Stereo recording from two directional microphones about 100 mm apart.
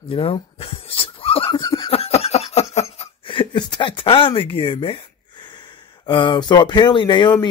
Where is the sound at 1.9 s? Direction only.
90° left.